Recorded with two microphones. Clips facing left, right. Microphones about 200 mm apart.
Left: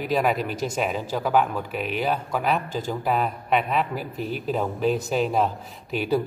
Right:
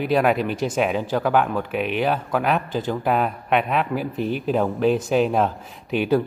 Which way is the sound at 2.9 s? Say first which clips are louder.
Right 3 dB; centre (ahead or behind).